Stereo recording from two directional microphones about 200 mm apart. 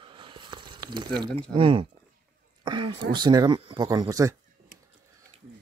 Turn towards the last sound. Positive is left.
turn(degrees=-15)  # may be behind; listen again after turning